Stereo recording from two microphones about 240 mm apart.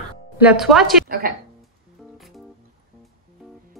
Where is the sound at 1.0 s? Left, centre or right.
Right.